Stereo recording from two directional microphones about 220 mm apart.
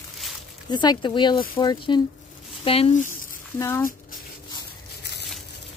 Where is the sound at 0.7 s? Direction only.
20° left (ahead or behind).